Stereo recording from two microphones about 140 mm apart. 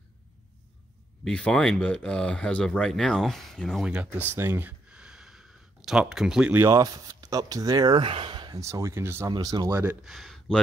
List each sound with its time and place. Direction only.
1.2 s speech: 5° left (ahead or behind)
3.8 s speech: 10° right (ahead or behind)
4.3 s a sound: 15° right (ahead or behind)
6.5 s speech: 20° right (ahead or behind)
8.5 s speech: 20° right (ahead or behind)
9.3 s speech: 30° right (ahead or behind)
10.0 s speech: centre (ahead or behind)